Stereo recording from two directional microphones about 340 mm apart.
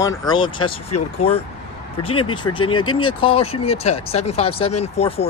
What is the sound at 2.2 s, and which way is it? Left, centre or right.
Speech, left.